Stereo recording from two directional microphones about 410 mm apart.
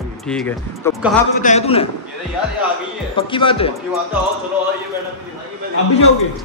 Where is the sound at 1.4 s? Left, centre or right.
Centre.